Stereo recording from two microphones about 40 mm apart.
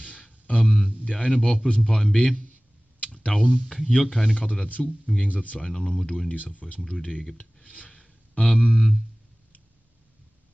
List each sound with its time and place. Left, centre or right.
0.5 s speech: left
3.3 s speech: centre
4.4 s speech: left
5.7 s speech: centre
6.3 s speech: left
7.0 s speech: left